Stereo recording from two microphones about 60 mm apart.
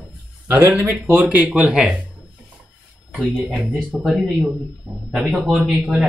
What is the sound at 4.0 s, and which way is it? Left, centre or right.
Speech, centre.